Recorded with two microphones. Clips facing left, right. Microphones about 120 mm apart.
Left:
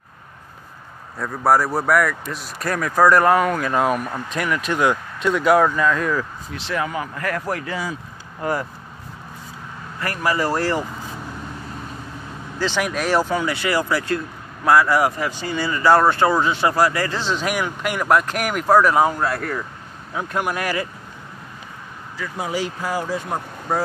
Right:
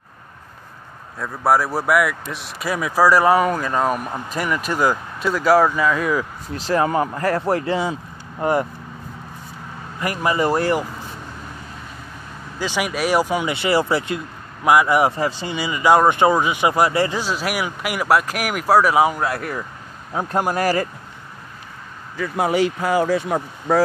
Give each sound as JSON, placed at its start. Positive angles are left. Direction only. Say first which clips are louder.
{"t": 1.1, "sound": "a man's voice", "louder": "even", "side_deg": 0}
{"t": 6.5, "sound": "speech", "louder": "right 6 dB", "side_deg": -40}
{"t": 7.2, "sound": "speech", "louder": "right 3 dB", "side_deg": -30}
{"t": 9.9, "sound": "speech", "louder": "right 2 dB", "side_deg": -15}
{"t": 12.5, "sound": "speech", "louder": "left 1 dB", "side_deg": -10}
{"t": 15.5, "sound": "speech", "louder": "even", "side_deg": -15}
{"t": 17.1, "sound": "speech", "louder": "even", "side_deg": -10}
{"t": 20.2, "sound": "speech", "louder": "right 3 dB", "side_deg": -35}
{"t": 22.2, "sound": "speech", "louder": "right 7 dB", "side_deg": -60}